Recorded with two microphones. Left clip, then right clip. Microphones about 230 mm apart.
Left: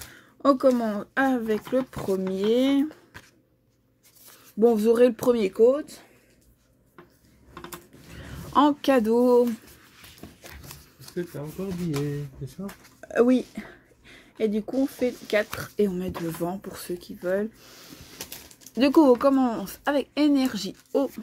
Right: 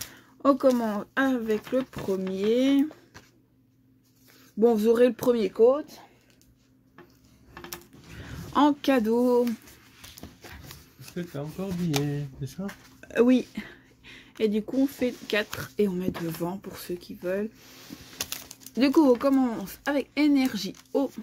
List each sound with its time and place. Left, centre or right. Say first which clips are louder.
0.2 s speech: left 2 dB; centre
4.6 s speech: left 2 dB; centre
8.1 s speech: left 3 dB; centre
13.0 s speech: left 1 dB; centre
18.1 s pigeon: right 6 dB; right
18.8 s speech: left 3 dB; centre